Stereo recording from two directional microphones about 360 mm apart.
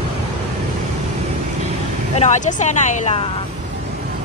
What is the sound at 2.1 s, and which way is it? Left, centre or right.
Speech, centre.